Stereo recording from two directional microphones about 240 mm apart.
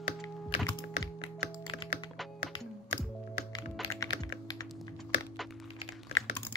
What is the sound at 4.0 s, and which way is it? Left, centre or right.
Computer keyboard, centre.